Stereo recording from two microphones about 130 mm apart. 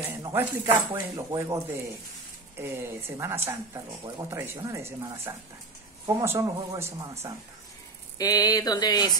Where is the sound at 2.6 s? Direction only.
20° right (ahead or behind).